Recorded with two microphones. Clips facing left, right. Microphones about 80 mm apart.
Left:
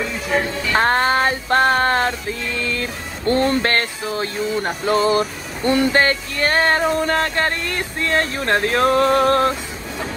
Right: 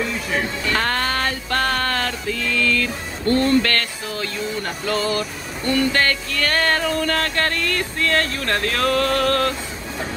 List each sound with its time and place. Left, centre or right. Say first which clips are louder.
0.4 s music: left 5 dB; left